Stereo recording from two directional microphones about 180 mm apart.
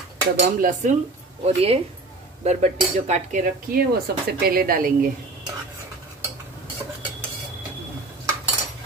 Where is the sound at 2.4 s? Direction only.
40° right (ahead or behind).